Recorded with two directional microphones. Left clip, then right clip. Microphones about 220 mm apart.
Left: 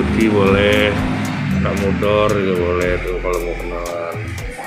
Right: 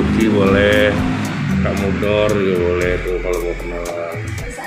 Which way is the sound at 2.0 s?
20° left (ahead or behind).